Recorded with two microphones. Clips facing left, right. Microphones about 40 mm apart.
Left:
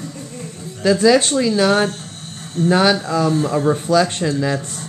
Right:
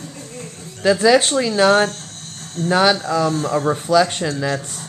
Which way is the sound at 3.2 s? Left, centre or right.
Centre.